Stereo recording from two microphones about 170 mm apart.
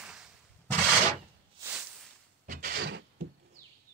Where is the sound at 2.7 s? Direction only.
90° right.